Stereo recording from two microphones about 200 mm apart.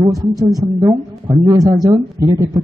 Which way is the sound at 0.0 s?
20° right (ahead or behind).